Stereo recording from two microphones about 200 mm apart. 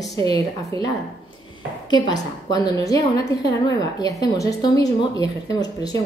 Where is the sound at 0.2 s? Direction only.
15° left (ahead or behind).